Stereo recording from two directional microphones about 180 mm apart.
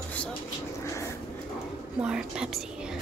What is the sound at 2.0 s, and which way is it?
Speech, 5° right (ahead or behind).